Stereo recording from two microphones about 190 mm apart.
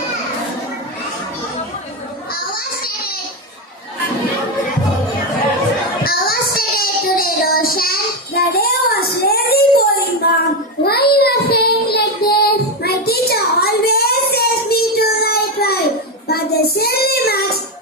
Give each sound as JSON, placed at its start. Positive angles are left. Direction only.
{"t": 2.3, "sound": "children playing", "side_deg": 50}
{"t": 6.0, "sound": "child singing", "side_deg": 50}